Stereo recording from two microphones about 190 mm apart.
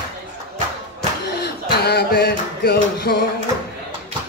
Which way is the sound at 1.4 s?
60° left (ahead or behind).